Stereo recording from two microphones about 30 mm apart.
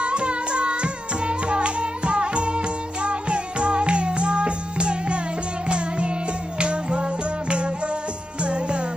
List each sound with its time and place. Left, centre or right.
0.0 s carnatic music: right
5.7 s music: right